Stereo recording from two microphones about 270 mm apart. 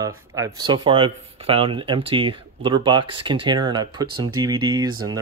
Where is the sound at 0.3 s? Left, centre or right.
Centre.